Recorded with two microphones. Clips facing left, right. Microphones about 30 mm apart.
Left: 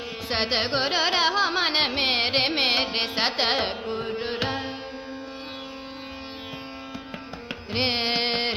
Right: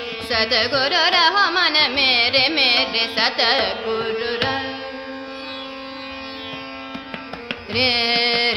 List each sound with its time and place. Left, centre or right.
0.3 s carnatic music: right
3.8 s carnatic music: right
4.2 s music: right
7.7 s music: right